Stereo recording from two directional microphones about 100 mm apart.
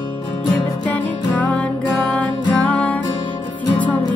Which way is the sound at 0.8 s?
10° left (ahead or behind).